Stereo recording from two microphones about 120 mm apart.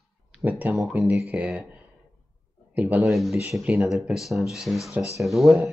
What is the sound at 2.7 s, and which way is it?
Speech, 15° right (ahead or behind).